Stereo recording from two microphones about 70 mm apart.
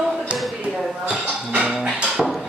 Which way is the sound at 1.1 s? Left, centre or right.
Centre.